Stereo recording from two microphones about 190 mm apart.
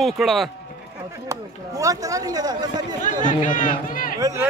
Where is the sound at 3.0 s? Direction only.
40° left (ahead or behind).